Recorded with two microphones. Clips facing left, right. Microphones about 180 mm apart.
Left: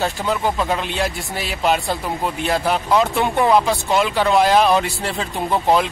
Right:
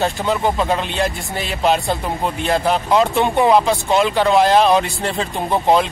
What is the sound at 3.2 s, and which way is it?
Speech, 20° right (ahead or behind).